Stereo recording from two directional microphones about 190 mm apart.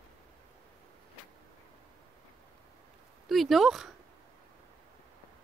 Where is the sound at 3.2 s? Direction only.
Centre (ahead or behind).